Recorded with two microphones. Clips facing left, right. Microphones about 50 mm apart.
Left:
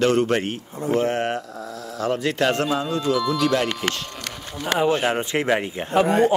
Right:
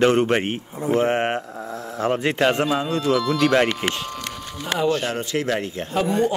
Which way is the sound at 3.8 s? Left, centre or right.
Centre.